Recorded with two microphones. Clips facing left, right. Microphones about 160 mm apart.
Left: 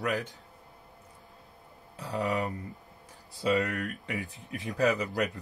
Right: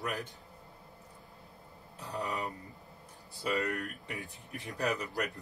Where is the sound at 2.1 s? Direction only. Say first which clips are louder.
Left 6 dB; 85° left.